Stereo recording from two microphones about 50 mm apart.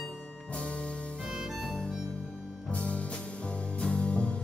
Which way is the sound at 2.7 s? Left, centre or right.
Left.